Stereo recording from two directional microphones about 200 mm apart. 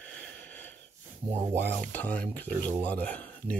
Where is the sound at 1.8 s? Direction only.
5° left (ahead or behind).